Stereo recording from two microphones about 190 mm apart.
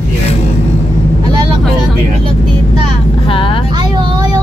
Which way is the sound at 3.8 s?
25° right (ahead or behind).